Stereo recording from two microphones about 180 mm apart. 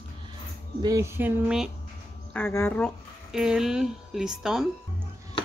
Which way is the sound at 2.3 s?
10° left (ahead or behind).